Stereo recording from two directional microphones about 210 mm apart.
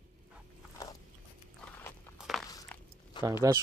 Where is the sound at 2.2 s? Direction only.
Centre (ahead or behind).